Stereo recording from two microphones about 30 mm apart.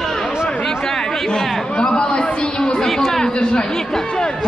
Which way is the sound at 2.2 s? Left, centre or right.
Left.